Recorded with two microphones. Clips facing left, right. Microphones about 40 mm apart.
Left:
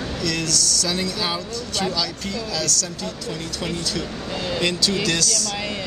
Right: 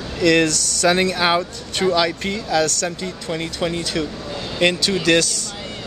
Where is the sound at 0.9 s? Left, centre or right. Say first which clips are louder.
Right 7 dB; right.